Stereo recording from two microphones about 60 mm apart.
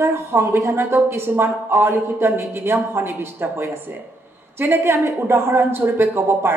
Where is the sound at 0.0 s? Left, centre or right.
Right.